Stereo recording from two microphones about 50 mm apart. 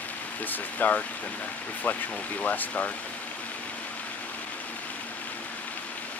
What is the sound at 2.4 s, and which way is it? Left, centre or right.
Speech, left.